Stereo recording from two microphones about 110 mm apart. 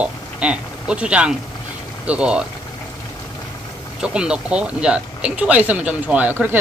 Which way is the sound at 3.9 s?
10° right (ahead or behind).